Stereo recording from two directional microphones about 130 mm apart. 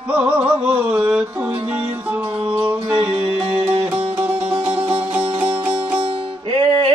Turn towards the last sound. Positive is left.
turn(degrees=-40)  # may be behind; listen again after turning